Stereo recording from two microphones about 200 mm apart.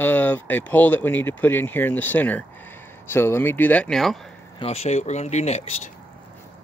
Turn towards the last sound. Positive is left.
turn(degrees=35)  # may be behind; listen again after turning